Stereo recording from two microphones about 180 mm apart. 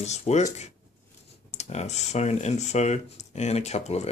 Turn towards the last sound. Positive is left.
turn(degrees=35)  # may be behind; listen again after turning